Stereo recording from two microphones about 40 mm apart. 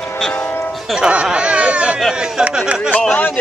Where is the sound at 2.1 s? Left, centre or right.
Centre.